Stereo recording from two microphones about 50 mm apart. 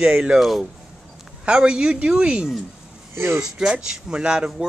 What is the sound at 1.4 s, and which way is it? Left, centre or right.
Speech, centre.